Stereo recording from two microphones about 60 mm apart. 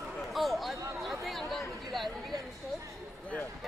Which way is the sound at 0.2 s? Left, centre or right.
Centre.